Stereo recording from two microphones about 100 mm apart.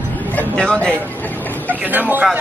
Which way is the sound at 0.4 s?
10° left (ahead or behind).